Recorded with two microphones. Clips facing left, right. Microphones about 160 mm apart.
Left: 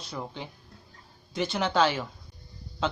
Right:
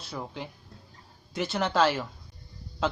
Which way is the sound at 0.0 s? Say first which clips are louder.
Even; 5° right (ahead or behind).